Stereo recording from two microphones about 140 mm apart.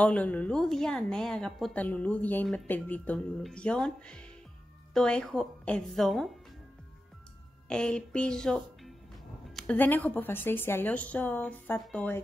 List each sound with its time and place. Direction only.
0.0 s a woman's voice: 10° left (ahead or behind)
7.6 s a woman's voice: 5° left (ahead or behind)